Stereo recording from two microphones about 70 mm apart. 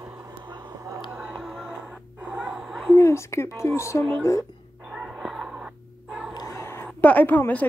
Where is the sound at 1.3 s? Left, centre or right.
Centre.